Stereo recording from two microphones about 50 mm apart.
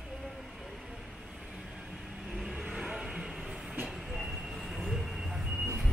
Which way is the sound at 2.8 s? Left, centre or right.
Centre.